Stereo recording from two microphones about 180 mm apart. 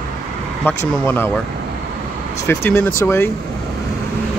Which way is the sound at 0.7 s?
10° left (ahead or behind).